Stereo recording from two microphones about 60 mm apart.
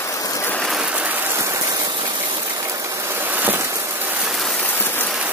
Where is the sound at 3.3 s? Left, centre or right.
Right.